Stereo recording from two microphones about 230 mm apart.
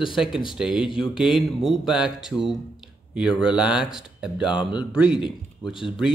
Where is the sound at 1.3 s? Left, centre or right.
Left.